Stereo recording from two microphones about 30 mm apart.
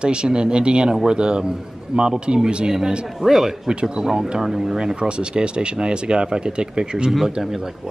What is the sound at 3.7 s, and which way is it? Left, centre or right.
Speech, right.